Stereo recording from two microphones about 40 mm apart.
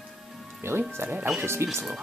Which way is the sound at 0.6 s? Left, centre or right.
Right.